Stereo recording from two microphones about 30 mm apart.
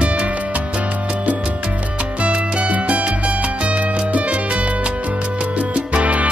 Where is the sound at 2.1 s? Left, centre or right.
Right.